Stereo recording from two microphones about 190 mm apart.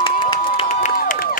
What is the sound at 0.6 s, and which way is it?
Crowd, 40° left (ahead or behind).